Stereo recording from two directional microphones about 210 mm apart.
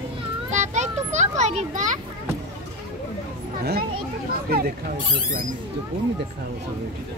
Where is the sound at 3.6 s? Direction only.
50° right (ahead or behind).